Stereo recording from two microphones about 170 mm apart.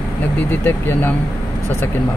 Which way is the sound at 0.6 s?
10° left (ahead or behind).